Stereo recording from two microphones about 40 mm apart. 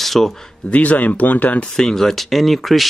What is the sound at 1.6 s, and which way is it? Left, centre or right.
Speech, centre.